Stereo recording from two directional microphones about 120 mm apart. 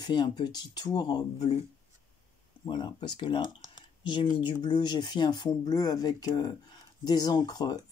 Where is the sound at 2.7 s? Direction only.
40° left (ahead or behind).